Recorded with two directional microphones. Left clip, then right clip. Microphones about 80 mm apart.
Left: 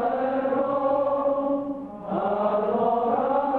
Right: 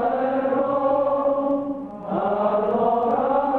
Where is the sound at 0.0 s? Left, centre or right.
Left.